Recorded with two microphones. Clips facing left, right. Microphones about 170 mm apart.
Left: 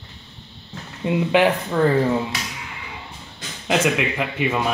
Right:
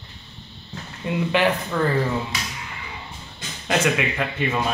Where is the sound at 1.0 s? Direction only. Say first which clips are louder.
Left 3 dB; 20° left (ahead or behind).